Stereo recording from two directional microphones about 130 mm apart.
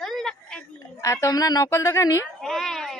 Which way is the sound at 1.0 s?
25° left (ahead or behind).